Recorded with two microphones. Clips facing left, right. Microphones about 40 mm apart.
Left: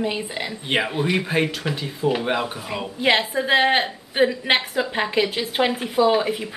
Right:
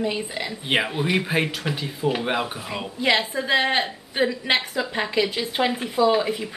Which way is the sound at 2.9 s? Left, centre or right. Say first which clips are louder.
Left 2 dB; centre.